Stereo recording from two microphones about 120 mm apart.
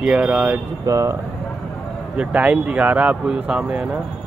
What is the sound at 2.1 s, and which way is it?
Speech, 10° right (ahead or behind).